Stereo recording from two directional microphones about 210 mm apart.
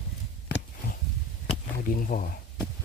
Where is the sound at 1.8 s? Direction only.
40° left (ahead or behind).